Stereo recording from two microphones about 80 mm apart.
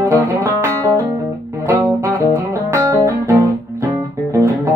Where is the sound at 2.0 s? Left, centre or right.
Right.